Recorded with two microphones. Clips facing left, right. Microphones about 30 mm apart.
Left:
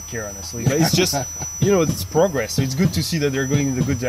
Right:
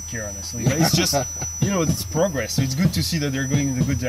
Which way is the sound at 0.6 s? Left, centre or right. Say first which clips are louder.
Left 2 dB; centre.